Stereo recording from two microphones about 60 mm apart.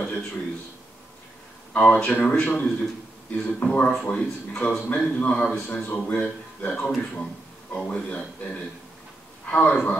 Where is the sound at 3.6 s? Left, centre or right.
Left.